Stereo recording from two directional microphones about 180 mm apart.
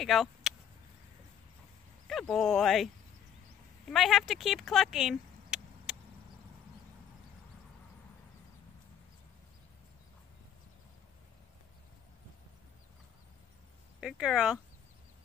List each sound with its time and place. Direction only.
0.0 s a sound: centre (ahead or behind)
2.0 s speech: centre (ahead or behind)
3.9 s speech: centre (ahead or behind)
14.0 s speech: 5° right (ahead or behind)